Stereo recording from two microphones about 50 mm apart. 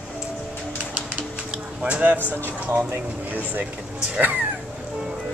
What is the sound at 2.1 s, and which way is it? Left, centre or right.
Speech, right.